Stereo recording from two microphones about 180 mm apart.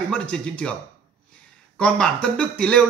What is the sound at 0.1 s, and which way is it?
Speech, 5° left (ahead or behind).